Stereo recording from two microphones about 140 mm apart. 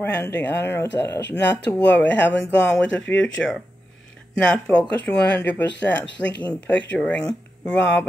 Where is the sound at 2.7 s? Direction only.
5° left (ahead or behind).